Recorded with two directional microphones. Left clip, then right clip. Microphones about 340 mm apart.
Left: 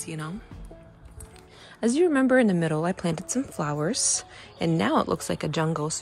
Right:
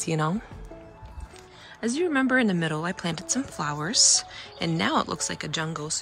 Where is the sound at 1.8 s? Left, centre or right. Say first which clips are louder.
Left 3 dB; centre.